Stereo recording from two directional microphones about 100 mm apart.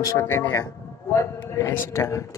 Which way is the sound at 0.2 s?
25° left (ahead or behind).